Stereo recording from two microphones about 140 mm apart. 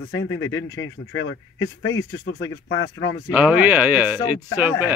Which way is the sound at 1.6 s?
25° left (ahead or behind).